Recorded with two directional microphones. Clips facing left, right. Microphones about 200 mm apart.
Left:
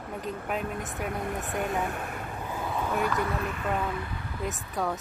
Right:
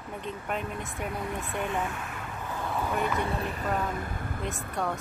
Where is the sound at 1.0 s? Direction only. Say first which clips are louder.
Left 1 dB; 45° left (ahead or behind).